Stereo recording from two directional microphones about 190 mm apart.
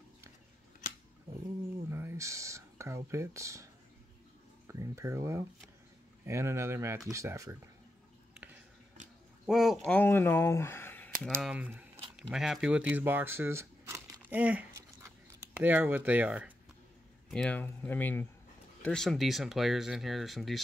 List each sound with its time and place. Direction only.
1.9 s speech: 15° right (ahead or behind)
4.6 s speech: 15° right (ahead or behind)
9.5 s speech: centre (ahead or behind)
9.8 s speech: 10° left (ahead or behind)
11.4 s speech: 10° right (ahead or behind)
17.3 s speech: 5° left (ahead or behind)